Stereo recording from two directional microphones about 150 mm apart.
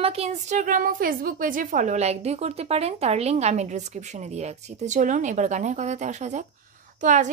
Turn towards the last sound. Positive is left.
turn(degrees=-55)  # may be behind; listen again after turning